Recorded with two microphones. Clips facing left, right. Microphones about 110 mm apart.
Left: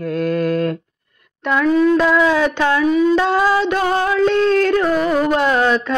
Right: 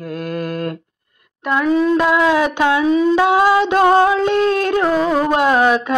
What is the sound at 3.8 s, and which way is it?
Carnatic music, 25° right (ahead or behind).